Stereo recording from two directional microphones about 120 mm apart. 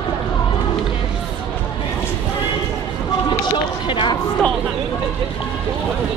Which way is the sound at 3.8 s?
45° left (ahead or behind).